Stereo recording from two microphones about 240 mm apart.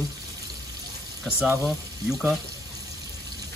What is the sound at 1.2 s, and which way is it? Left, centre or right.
Speech, centre.